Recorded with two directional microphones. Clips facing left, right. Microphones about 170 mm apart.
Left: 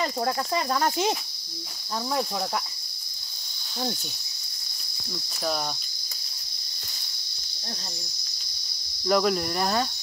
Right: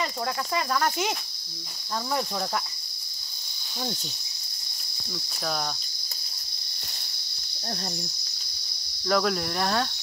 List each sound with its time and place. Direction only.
0.0 s speech: 35° left (ahead or behind)
5.4 s cricket: 5° left (ahead or behind)
9.0 s cricket: 5° left (ahead or behind)